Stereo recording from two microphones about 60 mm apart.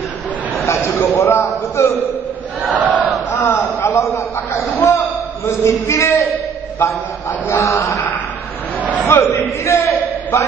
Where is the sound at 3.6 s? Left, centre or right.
Left.